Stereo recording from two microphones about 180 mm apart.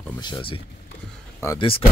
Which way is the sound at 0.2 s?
30° left (ahead or behind).